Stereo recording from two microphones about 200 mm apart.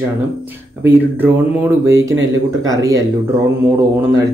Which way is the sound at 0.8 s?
10° right (ahead or behind).